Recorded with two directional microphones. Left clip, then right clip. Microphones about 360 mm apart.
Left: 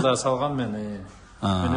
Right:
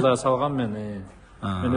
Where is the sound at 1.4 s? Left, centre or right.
Centre.